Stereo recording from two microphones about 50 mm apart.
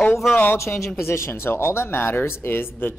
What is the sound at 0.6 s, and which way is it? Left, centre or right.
Speech, left.